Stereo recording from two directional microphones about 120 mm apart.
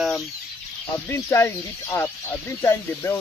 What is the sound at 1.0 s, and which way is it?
Speech, 20° left (ahead or behind).